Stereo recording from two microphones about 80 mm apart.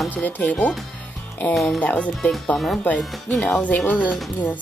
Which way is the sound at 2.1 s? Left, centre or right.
Centre.